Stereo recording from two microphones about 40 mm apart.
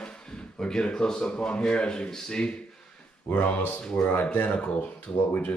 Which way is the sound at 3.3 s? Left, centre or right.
Left.